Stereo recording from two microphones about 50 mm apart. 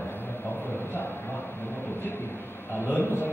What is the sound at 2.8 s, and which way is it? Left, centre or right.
Speech, left.